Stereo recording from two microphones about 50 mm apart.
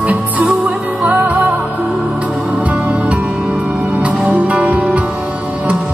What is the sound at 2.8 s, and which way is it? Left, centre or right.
Music, right.